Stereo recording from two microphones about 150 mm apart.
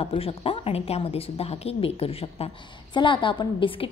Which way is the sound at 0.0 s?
40° left (ahead or behind).